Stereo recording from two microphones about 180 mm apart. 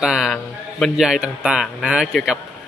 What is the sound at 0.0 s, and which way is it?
A man's voice, centre (ahead or behind).